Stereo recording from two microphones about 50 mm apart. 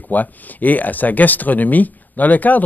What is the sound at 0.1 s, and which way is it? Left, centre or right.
Speech, left.